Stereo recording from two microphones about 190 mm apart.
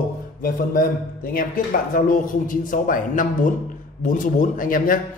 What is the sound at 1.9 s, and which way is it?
A man's voice, 45° left (ahead or behind).